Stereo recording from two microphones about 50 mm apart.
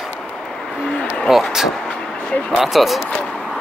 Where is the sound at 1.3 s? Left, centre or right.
Centre.